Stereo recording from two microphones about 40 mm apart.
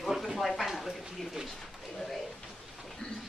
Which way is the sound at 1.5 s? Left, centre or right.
Centre.